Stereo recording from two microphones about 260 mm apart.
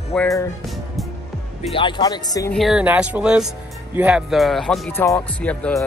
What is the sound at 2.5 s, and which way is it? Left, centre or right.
Speech, centre.